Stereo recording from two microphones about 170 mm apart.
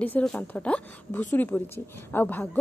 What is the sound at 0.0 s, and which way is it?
A woman's voice, 5° left (ahead or behind).